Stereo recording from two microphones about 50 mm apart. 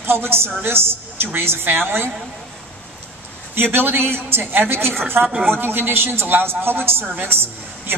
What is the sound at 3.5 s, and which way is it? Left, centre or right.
A woman's voice, right.